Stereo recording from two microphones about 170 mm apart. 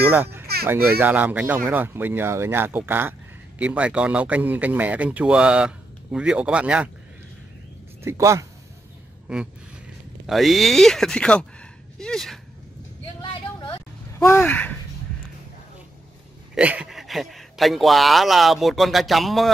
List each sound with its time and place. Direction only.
0.1 s speech: 10° right (ahead or behind)
8.0 s speech: 15° right (ahead or behind)
10.2 s speech: centre (ahead or behind)
13.2 s a sound: 30° left (ahead or behind)
14.2 s speech: 15° left (ahead or behind)
16.5 s speech: 5° right (ahead or behind)